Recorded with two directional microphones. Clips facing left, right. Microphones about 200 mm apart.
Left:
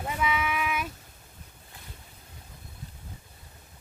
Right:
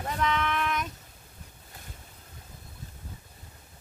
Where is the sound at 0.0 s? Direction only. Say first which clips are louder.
Even; 5° left (ahead or behind).